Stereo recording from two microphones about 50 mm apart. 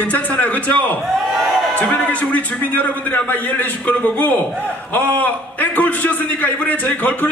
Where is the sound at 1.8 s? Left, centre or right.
Left.